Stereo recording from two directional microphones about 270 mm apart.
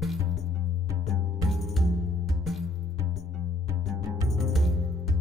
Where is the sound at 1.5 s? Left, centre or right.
Centre.